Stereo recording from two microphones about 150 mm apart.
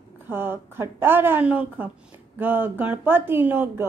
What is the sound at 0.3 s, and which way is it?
Speech, 15° right (ahead or behind).